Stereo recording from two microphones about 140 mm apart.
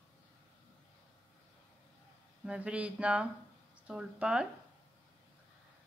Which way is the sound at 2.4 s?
10° right (ahead or behind).